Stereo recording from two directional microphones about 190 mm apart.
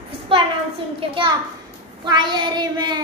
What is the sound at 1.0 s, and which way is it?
Child singing, 25° right (ahead or behind).